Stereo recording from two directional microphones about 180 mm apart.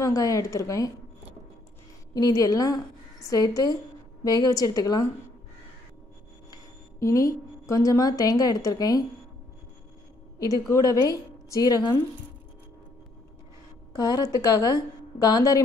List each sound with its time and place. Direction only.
0.0 s a woman's voice: 20° left (ahead or behind)
2.1 s a woman's voice: 20° left (ahead or behind)
6.5 s a woman's voice: 15° left (ahead or behind)
10.7 s a woman's voice: 20° left (ahead or behind)
13.9 s a woman's voice: 20° left (ahead or behind)